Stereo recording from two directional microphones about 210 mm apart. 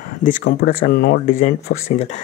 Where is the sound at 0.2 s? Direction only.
40° left (ahead or behind).